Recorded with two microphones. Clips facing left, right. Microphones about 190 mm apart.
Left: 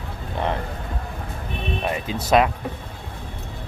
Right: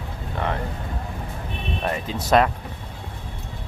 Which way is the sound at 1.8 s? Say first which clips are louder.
Right 2 dB; 10° left (ahead or behind).